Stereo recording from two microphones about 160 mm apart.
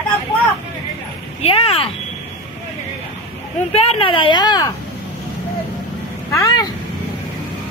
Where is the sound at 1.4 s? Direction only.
35° left (ahead or behind).